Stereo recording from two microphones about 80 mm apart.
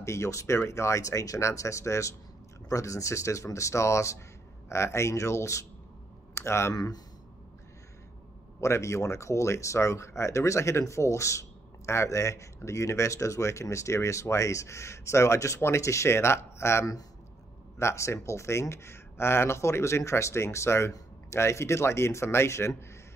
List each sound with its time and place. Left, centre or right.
0.0 s speech: left
6.7 s speech: left
8.5 s speech: left